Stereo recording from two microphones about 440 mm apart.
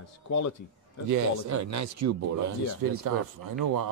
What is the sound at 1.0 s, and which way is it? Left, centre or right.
Speech, right.